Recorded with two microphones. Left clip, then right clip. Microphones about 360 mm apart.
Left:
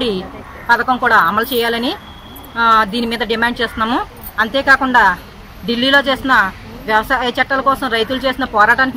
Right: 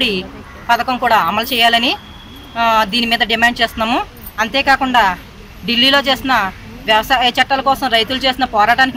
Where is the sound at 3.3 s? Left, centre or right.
Centre.